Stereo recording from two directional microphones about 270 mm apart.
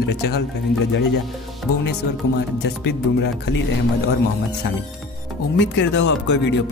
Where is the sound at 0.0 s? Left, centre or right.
Left.